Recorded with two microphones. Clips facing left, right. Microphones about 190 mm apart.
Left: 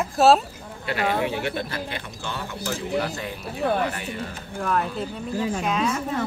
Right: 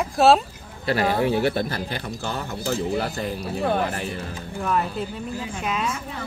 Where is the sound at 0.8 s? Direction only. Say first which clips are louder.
Right 3 dB; 35° right (ahead or behind).